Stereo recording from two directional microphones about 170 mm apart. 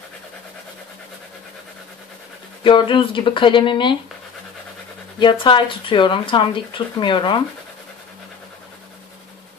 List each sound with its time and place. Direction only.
2.6 s speech: 30° left (ahead or behind)
5.2 s speech: 30° left (ahead or behind)